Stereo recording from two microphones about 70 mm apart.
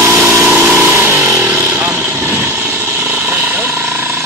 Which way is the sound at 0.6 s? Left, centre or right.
Right.